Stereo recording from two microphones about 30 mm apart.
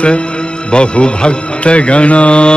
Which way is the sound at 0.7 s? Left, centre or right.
Left.